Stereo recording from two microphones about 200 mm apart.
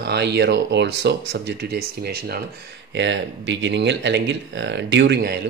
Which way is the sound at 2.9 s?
65° right (ahead or behind).